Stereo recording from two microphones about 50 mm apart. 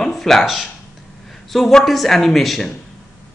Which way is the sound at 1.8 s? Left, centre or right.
Centre.